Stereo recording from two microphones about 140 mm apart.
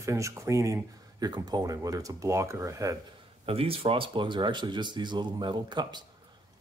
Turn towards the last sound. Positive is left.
turn(degrees=-30)  # may be behind; listen again after turning